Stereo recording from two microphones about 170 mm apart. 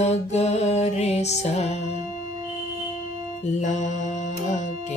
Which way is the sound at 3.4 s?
45° left (ahead or behind).